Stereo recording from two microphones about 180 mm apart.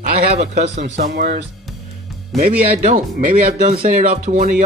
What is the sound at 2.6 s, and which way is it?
Speech, 40° right (ahead or behind).